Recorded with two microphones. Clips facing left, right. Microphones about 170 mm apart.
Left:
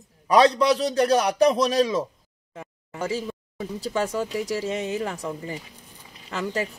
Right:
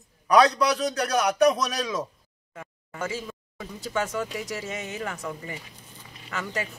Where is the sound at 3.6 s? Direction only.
35° left (ahead or behind).